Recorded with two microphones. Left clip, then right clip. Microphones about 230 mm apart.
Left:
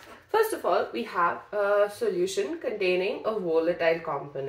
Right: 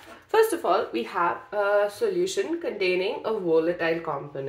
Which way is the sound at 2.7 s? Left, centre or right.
Right.